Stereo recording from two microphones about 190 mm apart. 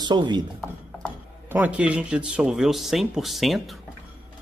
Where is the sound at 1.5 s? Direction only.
10° right (ahead or behind).